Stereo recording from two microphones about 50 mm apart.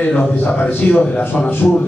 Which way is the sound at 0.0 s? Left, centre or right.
Left.